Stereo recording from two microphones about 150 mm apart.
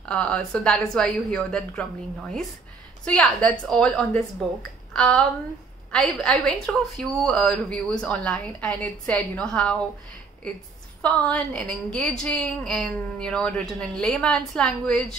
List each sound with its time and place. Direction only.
0.0 s a woman's voice: 5° left (ahead or behind)
3.1 s a woman's voice: 10° left (ahead or behind)
11.0 s a woman's voice: 10° left (ahead or behind)